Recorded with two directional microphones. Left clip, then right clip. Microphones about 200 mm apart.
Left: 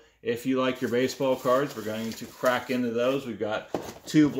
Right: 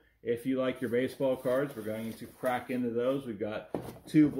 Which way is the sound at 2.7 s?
40° left (ahead or behind).